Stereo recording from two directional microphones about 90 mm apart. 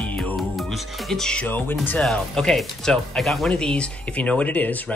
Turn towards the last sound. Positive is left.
turn(degrees=20)  # may be behind; listen again after turning